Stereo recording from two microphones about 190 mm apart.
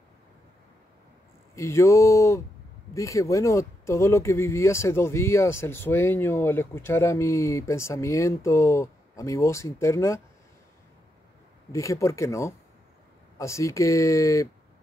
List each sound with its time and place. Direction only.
1.5 s speech: 15° left (ahead or behind)
11.7 s speech: 15° left (ahead or behind)